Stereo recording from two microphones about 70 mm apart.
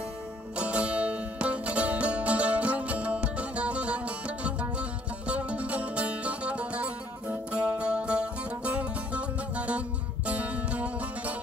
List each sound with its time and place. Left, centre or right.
0.6 s music: centre